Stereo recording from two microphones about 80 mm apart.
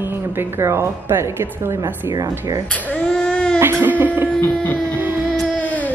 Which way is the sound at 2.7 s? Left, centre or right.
Centre.